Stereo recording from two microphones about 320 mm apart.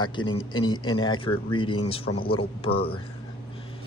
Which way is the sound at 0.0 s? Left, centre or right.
Centre.